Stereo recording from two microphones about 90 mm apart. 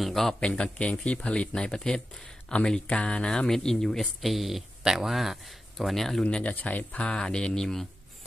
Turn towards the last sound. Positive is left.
turn(degrees=5)  # may be behind; listen again after turning